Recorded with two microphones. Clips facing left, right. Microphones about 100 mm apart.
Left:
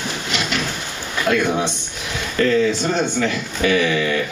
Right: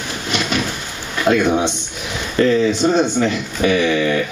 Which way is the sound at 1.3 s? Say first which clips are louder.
Right 4 dB; 40° right (ahead or behind).